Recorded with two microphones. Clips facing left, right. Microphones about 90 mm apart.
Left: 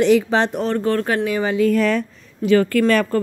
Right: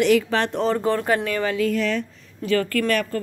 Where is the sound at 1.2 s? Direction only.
15° left (ahead or behind).